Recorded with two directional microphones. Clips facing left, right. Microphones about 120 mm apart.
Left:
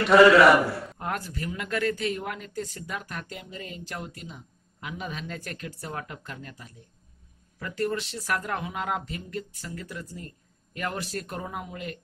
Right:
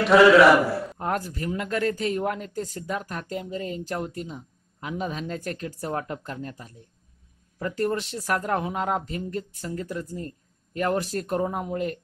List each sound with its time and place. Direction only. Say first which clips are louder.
0.0 s a man's voice: right 1 dB; centre (ahead or behind)
0.9 s speech: right 4 dB; 30° right (ahead or behind)